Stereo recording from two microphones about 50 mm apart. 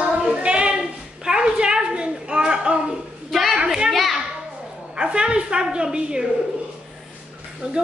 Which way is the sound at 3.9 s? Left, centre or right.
Centre.